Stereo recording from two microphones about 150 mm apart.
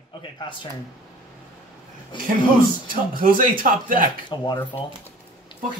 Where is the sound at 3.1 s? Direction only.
70° right (ahead or behind).